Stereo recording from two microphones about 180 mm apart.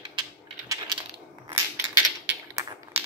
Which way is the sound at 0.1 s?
25° right (ahead or behind).